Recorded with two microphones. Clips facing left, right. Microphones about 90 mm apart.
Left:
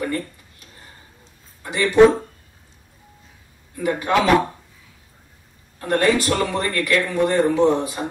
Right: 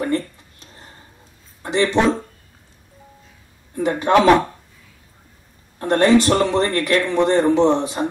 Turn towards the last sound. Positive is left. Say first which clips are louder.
# right 2 dB
turn(degrees=-25)  # may be behind; listen again after turning